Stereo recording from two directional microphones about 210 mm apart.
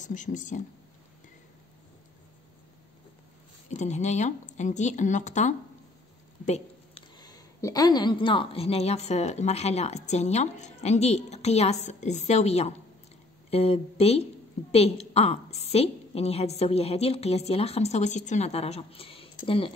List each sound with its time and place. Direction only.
0.0 s a woman's voice: 35° left (ahead or behind)
3.6 s a woman's voice: 35° left (ahead or behind)
6.4 s a sound: 30° left (ahead or behind)
7.2 s a woman's voice: 20° left (ahead or behind)